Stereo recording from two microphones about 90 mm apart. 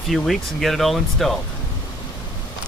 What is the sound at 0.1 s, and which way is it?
Speech, centre (ahead or behind).